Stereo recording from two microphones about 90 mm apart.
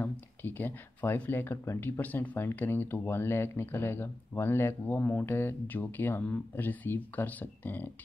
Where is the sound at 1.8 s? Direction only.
20° left (ahead or behind).